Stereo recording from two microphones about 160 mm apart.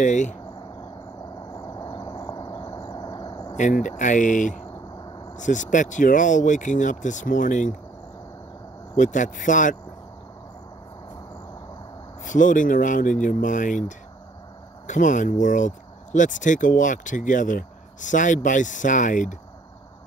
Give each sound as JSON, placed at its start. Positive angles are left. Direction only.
{"t": 0.0, "sound": "speech", "side_deg": 50}
{"t": 1.5, "sound": "a sound", "side_deg": 25}
{"t": 3.5, "sound": "speech", "side_deg": 50}
{"t": 5.0, "sound": "a sound", "side_deg": 25}
{"t": 5.3, "sound": "speech", "side_deg": 50}
{"t": 8.9, "sound": "speech", "side_deg": 50}
{"t": 12.2, "sound": "speech", "side_deg": 55}